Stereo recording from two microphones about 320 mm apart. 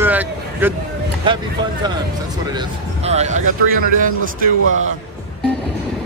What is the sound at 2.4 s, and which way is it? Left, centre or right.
A man's voice, centre.